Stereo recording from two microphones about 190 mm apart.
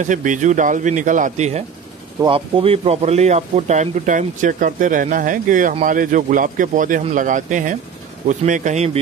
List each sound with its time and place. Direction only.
0.0 s speech: 40° right (ahead or behind)